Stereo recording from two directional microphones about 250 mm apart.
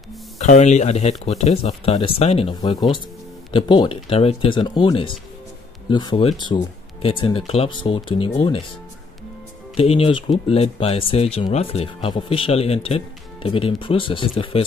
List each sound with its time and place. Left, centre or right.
0.4 s speech: left
9.8 s speech: left